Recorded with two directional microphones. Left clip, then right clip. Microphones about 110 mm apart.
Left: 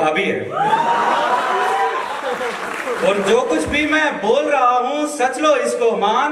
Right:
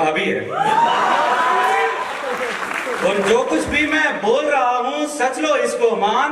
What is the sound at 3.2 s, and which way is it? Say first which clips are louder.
A man's voice: left 1 dB; 15° left (ahead or behind).